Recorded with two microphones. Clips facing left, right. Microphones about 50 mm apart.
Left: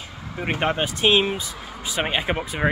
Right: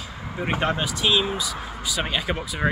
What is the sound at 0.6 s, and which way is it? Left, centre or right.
Speech, left.